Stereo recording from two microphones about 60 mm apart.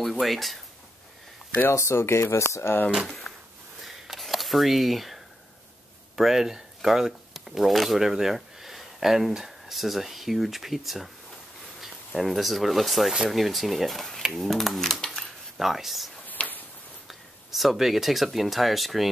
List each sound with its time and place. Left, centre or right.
0.0 s speech: centre
1.7 s speech: left
3.1 s drawer open or close: centre
3.8 s a sound: centre
6.1 s speech: centre
12.2 s speech: centre
16.3 s a sound: left
17.1 s speech: centre